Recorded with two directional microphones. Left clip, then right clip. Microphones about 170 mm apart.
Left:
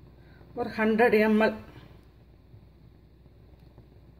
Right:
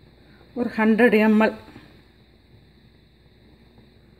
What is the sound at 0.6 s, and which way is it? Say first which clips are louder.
Speech: right 5 dB; 55° right (ahead or behind).